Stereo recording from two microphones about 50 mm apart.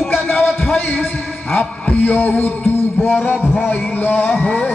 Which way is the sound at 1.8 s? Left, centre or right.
Left.